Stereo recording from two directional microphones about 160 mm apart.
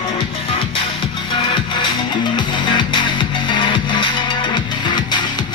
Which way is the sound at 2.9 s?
30° left (ahead or behind).